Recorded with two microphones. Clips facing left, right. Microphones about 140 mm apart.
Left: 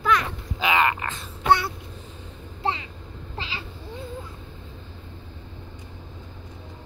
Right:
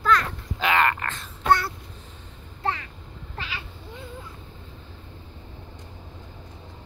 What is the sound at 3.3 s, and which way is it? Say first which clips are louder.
Vehicle: left 1 dB; 25° left (ahead or behind).